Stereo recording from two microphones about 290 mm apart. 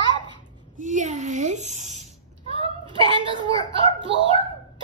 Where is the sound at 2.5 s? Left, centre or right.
Centre.